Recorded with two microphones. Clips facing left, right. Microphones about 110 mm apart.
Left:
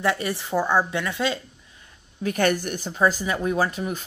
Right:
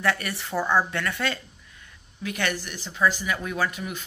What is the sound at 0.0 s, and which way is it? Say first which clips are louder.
Speech: left 2 dB; 20° left (ahead or behind).